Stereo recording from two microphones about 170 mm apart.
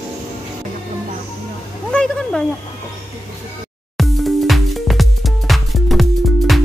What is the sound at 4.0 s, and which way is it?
Music, centre (ahead or behind).